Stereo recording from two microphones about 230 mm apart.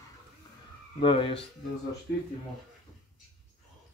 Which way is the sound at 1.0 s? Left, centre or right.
Left.